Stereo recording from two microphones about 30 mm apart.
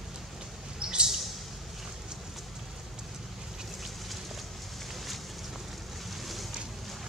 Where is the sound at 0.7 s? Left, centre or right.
Right.